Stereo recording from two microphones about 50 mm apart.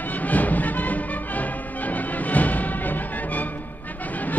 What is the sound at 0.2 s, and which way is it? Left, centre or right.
Music, left.